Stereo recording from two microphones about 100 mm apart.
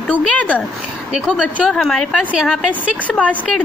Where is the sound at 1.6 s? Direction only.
Centre (ahead or behind).